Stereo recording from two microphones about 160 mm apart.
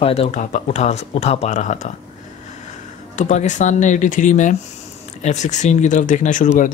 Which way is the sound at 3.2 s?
50° left (ahead or behind).